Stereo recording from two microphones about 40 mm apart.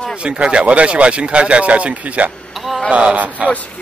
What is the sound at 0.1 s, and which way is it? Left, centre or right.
Speech, right.